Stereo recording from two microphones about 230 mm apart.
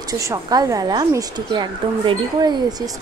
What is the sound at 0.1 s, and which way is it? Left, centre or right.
A woman's voice, centre.